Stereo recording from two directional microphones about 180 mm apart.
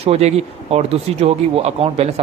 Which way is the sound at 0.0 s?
35° right (ahead or behind).